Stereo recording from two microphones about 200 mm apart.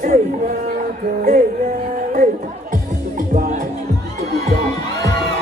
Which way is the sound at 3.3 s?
35° right (ahead or behind).